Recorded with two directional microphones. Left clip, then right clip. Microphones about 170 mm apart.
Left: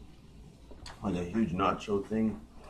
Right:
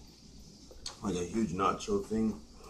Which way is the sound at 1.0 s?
10° right (ahead or behind).